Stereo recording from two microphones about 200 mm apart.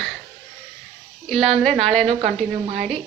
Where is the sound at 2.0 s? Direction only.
30° right (ahead or behind).